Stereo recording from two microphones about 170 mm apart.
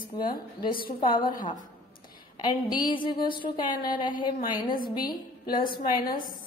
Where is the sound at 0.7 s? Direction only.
60° left (ahead or behind).